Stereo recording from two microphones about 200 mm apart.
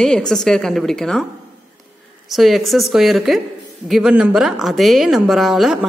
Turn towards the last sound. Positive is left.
turn(degrees=0)  # may be behind; listen again after turning